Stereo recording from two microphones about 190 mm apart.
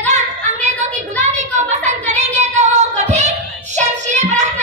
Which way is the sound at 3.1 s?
35° right (ahead or behind).